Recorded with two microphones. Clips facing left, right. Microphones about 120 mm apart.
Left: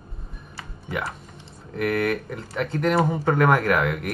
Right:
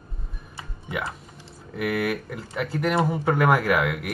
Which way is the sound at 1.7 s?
5° right (ahead or behind).